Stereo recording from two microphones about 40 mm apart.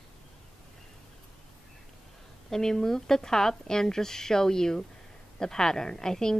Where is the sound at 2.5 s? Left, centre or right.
Centre.